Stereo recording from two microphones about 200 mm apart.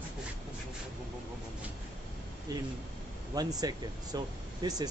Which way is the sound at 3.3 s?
20° right (ahead or behind).